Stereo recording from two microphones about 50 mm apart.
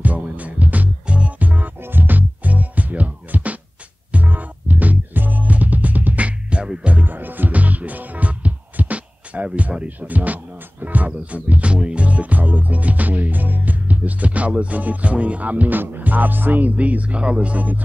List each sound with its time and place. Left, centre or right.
0.0 s music: right
1.8 s music: right; by 6.9 s centre
6.9 s music: right
15.8 s speech: right